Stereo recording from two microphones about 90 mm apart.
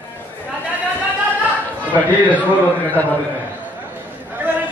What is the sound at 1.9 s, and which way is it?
A man's voice, 15° left (ahead or behind).